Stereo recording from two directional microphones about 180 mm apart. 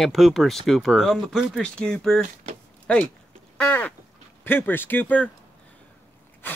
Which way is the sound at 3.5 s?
10° left (ahead or behind).